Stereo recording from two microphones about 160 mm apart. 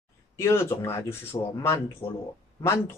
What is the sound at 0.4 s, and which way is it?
Speech, 15° left (ahead or behind).